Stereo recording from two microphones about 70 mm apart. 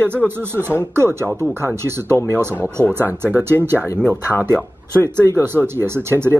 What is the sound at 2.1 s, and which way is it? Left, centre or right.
Speech, left.